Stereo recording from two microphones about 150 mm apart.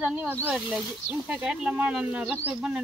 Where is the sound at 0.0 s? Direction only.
5° right (ahead or behind).